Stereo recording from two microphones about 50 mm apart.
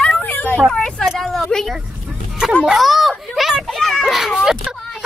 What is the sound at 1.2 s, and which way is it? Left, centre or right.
Speech, centre.